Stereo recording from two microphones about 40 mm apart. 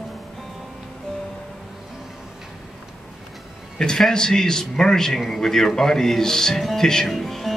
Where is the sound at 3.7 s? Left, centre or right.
Centre.